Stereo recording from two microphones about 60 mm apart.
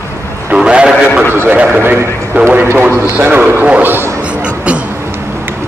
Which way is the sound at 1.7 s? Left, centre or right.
Right.